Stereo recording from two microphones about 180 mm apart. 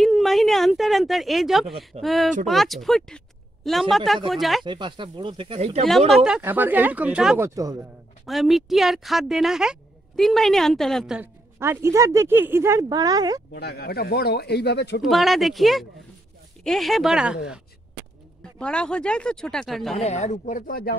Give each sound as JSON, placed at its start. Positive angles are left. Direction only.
{"t": 0.0, "sound": "speech", "side_deg": 0}
{"t": 4.6, "sound": "speech", "side_deg": -25}
{"t": 5.9, "sound": "speech", "side_deg": 0}
{"t": 7.4, "sound": "speech", "side_deg": -20}
{"t": 8.3, "sound": "speech", "side_deg": 0}
{"t": 11.6, "sound": "speech", "side_deg": -15}
{"t": 13.5, "sound": "speech", "side_deg": 65}
{"t": 15.0, "sound": "speech", "side_deg": 0}
{"t": 18.6, "sound": "speech", "side_deg": 5}
{"t": 20.0, "sound": "speech", "side_deg": 40}